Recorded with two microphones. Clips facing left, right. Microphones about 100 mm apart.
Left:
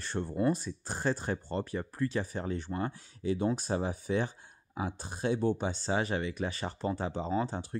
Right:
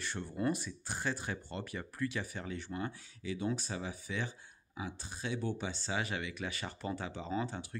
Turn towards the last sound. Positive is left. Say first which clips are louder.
# left 5 dB
turn(degrees=35)  # may be behind; listen again after turning